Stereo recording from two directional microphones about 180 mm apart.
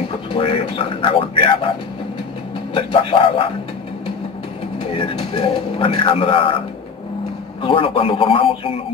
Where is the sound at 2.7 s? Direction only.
30° left (ahead or behind).